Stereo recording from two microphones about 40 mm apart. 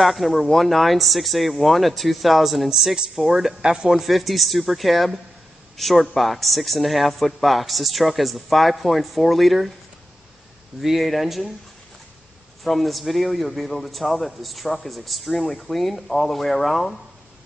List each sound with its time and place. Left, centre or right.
0.0 s a man's voice: centre
3.6 s speech: centre
3.9 s a man's voice: centre
10.8 s a man's voice: centre
12.6 s a man's voice: centre